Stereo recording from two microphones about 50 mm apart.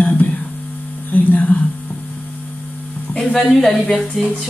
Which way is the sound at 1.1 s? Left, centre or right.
Left.